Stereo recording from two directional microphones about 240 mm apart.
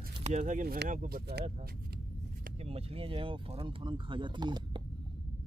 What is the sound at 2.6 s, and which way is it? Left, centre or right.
Speech, right.